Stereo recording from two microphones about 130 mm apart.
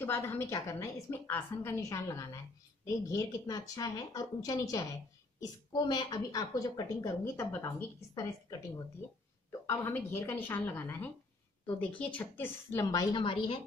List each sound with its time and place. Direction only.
0.0 s a woman's voice: 15° left (ahead or behind)
13.1 s a woman's voice: 40° left (ahead or behind)